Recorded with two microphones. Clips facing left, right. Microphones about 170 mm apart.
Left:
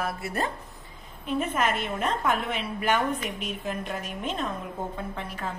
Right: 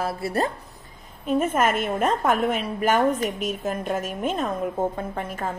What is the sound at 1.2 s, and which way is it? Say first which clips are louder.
A woman's voice: right 5 dB; 45° right (ahead or behind).